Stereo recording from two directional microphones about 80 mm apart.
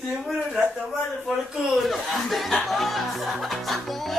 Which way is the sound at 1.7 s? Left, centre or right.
Centre.